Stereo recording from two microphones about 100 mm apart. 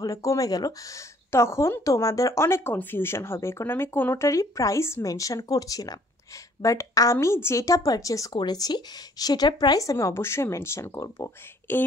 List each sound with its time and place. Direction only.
0.0 s speech: 35° left (ahead or behind)